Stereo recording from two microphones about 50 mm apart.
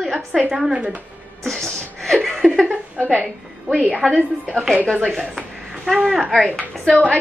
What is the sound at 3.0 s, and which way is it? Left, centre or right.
Speech, right.